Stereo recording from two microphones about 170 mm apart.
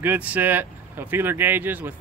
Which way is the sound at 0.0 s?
10° right (ahead or behind).